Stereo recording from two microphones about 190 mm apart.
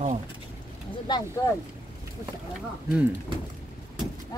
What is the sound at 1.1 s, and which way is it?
Speech, 25° left (ahead or behind).